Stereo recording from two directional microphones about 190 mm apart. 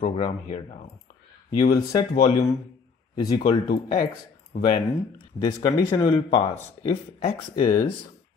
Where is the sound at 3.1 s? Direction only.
25° left (ahead or behind).